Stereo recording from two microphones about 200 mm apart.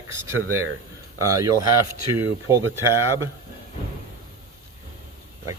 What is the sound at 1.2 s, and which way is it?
Speech, 15° right (ahead or behind).